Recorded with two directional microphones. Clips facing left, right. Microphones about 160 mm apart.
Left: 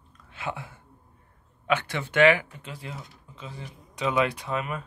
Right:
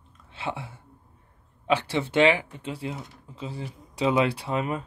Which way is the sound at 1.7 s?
30° right (ahead or behind).